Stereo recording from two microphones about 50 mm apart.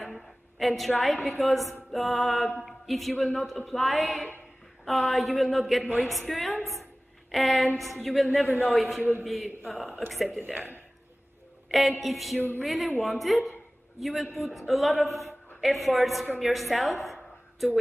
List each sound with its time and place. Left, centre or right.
0.0 s a woman's voice: centre
10.4 s speech: right
12.0 s a man's voice: centre